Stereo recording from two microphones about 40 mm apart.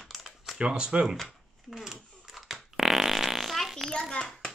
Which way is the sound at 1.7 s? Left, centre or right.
Centre.